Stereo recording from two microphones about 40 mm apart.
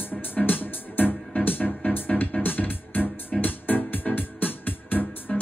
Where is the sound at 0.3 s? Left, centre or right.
Left.